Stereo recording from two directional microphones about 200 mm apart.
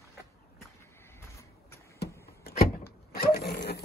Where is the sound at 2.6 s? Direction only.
50° left (ahead or behind).